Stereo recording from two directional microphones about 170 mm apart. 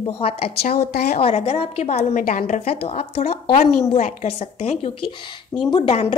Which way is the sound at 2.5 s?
35° left (ahead or behind).